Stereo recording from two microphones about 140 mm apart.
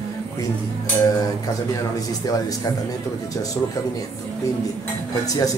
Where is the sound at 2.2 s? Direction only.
25° left (ahead or behind).